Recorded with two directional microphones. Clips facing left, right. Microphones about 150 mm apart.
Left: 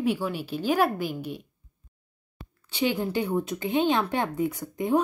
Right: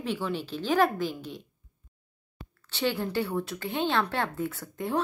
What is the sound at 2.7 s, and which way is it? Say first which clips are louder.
A woman's voice: left 2 dB; 15° left (ahead or behind).